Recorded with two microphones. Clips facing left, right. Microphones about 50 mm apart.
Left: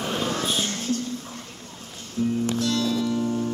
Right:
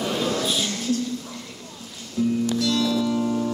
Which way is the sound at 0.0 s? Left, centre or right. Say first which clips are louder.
Right 2 dB; left.